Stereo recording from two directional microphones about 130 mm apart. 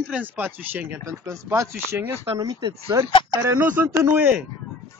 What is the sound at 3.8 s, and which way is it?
Speech, 15° right (ahead or behind).